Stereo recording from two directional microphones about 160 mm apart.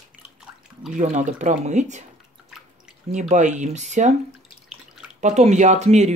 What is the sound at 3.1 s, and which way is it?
Speech, 45° right (ahead or behind).